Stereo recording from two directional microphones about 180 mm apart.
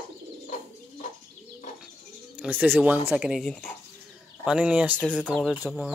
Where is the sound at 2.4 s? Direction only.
10° right (ahead or behind).